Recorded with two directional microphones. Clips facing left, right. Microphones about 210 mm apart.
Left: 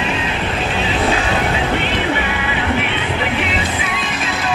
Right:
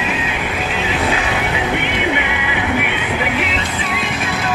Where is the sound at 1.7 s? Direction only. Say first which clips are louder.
Even; 15° right (ahead or behind).